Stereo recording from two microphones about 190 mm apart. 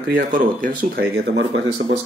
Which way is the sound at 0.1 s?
50° right (ahead or behind).